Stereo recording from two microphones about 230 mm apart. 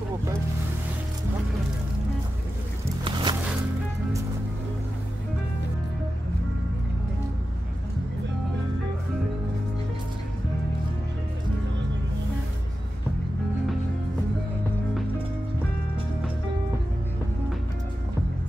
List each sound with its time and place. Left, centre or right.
3.0 s music: centre